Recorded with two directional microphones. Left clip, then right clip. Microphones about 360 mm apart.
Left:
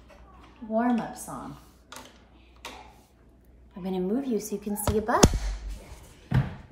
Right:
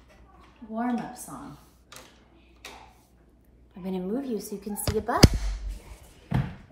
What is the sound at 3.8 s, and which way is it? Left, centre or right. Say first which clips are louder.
A woman's voice: left 2 dB; centre.